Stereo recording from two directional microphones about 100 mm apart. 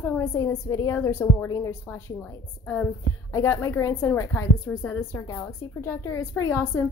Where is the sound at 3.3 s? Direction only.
30° left (ahead or behind).